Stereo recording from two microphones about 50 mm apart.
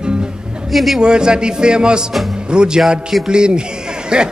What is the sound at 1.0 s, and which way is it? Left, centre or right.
Speech, centre.